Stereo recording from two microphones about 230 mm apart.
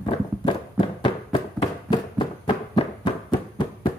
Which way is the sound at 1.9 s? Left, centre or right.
Left.